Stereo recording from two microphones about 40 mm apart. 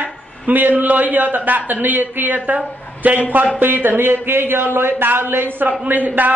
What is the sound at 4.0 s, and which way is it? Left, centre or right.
Speech, right.